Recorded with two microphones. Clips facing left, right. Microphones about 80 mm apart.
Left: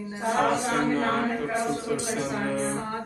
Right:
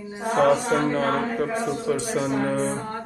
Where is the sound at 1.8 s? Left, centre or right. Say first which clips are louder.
Right 4 dB; right.